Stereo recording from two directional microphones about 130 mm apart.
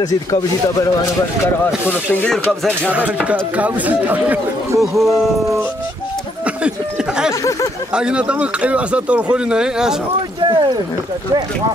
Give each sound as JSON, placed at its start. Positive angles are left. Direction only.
{"t": 0.0, "sound": "speech", "side_deg": 25}
{"t": 1.9, "sound": "speech", "side_deg": 10}
{"t": 3.1, "sound": "speech", "side_deg": -10}
{"t": 4.7, "sound": "speech", "side_deg": 0}
{"t": 6.4, "sound": "a sound", "side_deg": -5}
{"t": 7.9, "sound": "speech", "side_deg": -10}
{"t": 10.4, "sound": "speech", "side_deg": -35}